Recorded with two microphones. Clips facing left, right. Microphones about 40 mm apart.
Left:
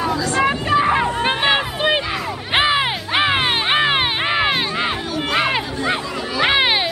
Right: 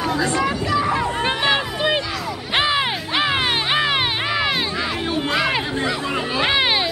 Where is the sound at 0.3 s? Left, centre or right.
Left.